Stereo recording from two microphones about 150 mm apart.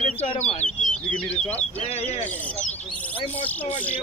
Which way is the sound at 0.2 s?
45° left (ahead or behind).